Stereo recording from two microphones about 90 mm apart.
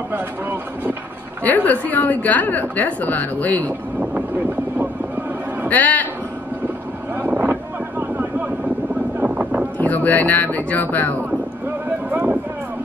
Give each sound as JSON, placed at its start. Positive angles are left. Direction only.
{"t": 0.1, "sound": "speech", "side_deg": -20}
{"t": 1.4, "sound": "a woman's voice", "side_deg": 20}
{"t": 5.7, "sound": "a woman's voice", "side_deg": 20}
{"t": 7.2, "sound": "boat", "side_deg": -20}
{"t": 9.2, "sound": "boat", "side_deg": -15}
{"t": 9.8, "sound": "a woman's voice", "side_deg": 20}
{"t": 12.1, "sound": "a sound", "side_deg": -15}